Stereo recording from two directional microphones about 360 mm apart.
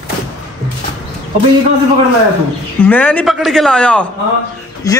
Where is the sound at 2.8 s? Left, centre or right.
Centre.